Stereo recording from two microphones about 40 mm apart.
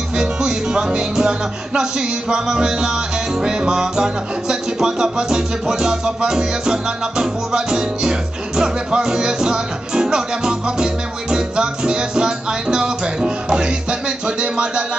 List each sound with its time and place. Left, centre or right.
0.1 s music: right